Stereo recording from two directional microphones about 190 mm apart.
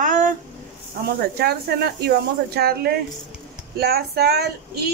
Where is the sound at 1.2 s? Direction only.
55° right (ahead or behind).